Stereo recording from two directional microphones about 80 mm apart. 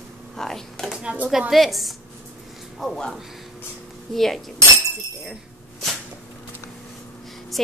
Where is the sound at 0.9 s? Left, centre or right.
Centre.